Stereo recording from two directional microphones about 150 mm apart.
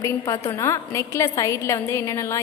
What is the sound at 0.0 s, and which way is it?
A woman's voice, 20° left (ahead or behind).